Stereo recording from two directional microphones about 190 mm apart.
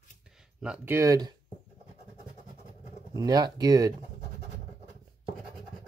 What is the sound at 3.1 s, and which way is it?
Speech, 20° right (ahead or behind).